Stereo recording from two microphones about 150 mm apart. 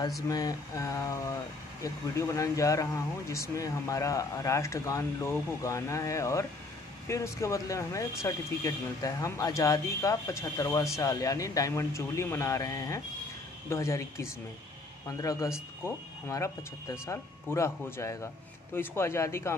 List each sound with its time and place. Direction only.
0.3 s speech: 25° left (ahead or behind)